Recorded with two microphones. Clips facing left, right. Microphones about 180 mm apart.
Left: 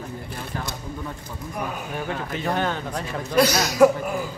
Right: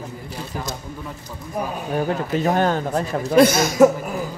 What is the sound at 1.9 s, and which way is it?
A man's voice, 40° right (ahead or behind).